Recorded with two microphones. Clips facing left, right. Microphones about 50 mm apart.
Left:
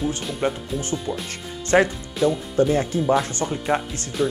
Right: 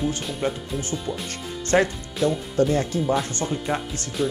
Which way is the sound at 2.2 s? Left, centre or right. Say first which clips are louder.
Left 2 dB; centre.